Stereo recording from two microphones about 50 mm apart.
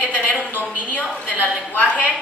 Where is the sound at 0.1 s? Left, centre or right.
Left.